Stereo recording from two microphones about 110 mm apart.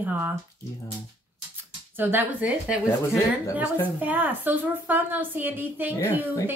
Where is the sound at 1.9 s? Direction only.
15° right (ahead or behind).